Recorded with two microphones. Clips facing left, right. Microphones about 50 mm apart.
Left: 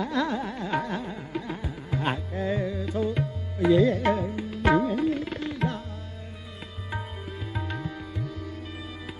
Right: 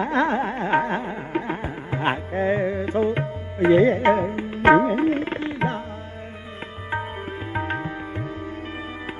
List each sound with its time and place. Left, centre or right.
0.0 s music: right
7.5 s music: right